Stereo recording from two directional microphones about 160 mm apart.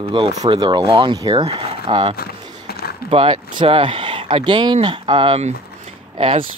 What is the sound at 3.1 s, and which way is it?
Speech, 35° right (ahead or behind).